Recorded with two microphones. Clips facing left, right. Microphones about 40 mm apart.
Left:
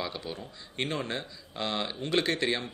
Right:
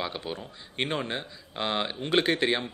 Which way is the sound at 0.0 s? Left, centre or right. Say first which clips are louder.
Right 2 dB; right.